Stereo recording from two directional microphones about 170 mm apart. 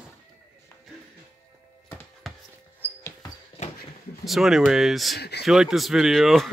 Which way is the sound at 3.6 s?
45° left (ahead or behind).